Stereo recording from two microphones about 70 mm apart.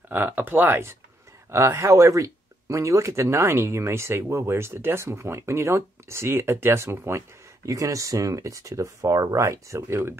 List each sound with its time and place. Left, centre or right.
0.1 s speech: right
1.8 s speech: right